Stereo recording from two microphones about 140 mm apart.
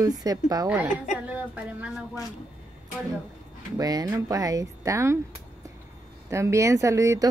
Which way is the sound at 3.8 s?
25° right (ahead or behind).